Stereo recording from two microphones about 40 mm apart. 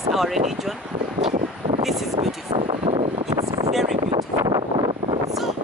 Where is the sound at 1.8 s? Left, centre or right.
Centre.